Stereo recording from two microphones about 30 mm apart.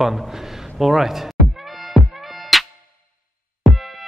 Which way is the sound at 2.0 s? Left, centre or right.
Centre.